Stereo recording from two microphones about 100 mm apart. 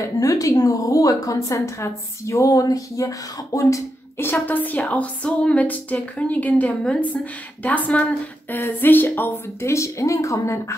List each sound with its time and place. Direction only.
0.0 s a woman's voice: 35° left (ahead or behind)